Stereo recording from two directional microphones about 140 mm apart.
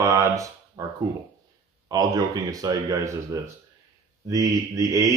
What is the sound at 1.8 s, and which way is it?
Speech, 25° right (ahead or behind).